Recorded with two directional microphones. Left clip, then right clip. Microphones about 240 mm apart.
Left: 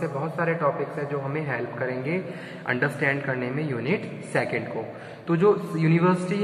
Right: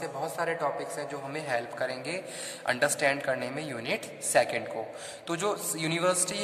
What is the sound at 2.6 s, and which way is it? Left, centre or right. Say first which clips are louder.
A man's voice: left 2 dB; right.